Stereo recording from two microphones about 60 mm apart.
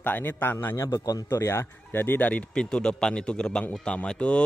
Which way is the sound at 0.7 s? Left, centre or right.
Left.